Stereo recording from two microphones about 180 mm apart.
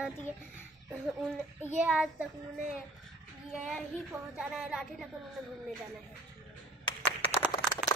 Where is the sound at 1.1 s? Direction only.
10° right (ahead or behind).